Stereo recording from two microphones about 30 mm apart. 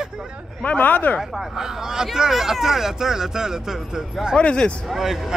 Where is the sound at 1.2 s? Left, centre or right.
Centre.